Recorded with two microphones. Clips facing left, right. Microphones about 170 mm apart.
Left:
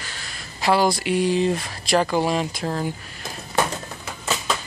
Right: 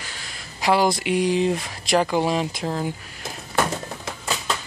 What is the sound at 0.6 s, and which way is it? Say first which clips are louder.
Speech: even; 15° right (ahead or behind).